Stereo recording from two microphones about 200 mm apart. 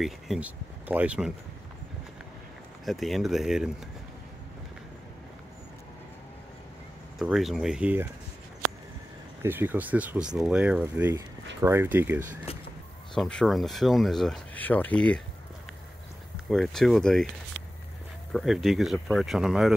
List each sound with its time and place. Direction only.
0.0 s speech: 5° right (ahead or behind)
2.8 s speech: centre (ahead or behind)
7.2 s speech: centre (ahead or behind)
9.4 s speech: 10° right (ahead or behind)
12.5 s speech: 30° left (ahead or behind)
13.1 s speech: 5° left (ahead or behind)
16.4 s speech: centre (ahead or behind)
18.3 s speech: centre (ahead or behind)